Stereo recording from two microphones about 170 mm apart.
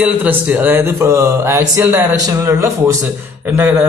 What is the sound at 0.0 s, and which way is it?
A man's voice, 10° right (ahead or behind).